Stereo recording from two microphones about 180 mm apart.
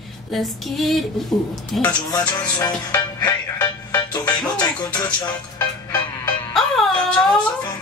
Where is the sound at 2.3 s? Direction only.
20° left (ahead or behind).